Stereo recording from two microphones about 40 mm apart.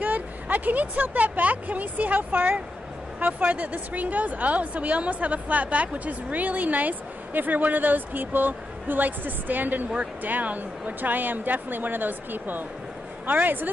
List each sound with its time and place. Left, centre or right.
0.0 s a woman's voice: right